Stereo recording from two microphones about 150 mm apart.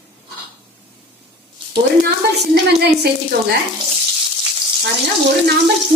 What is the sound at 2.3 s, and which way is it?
Speech, 90° right.